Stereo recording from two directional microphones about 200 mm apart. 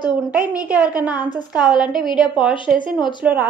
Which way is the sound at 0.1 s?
5° right (ahead or behind).